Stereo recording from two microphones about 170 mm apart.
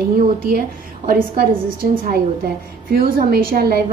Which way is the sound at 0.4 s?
60° right (ahead or behind).